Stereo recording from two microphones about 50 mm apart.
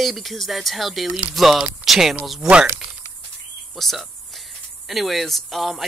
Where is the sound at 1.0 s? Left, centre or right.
Right.